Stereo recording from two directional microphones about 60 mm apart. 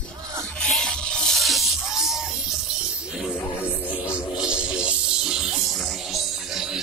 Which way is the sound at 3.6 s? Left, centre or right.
Left.